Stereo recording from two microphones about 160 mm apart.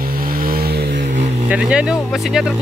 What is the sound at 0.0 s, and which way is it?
Vehicle, 65° right (ahead or behind).